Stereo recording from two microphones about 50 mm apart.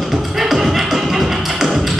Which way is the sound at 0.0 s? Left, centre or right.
Centre.